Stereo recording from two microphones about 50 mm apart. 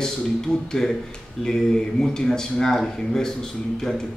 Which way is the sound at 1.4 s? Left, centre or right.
Centre.